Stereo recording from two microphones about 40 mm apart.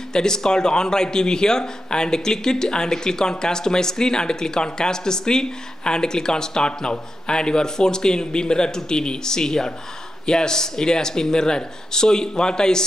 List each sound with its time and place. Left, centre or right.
0.1 s speech: centre